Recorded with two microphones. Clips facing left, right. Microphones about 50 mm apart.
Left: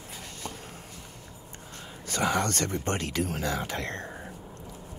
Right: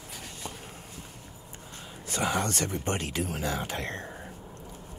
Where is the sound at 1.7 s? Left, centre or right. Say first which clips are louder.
Left 1 dB; left.